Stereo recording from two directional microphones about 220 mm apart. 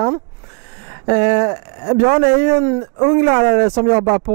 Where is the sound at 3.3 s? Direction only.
20° right (ahead or behind).